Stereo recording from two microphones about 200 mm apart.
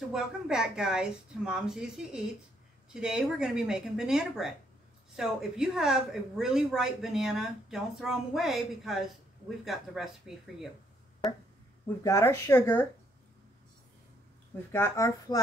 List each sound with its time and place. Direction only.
0.1 s a woman's voice: 5° right (ahead or behind)
12.0 s speech: 15° left (ahead or behind)
14.7 s speech: 15° left (ahead or behind)